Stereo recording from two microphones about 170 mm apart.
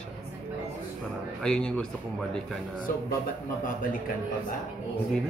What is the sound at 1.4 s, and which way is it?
Speech, 5° left (ahead or behind).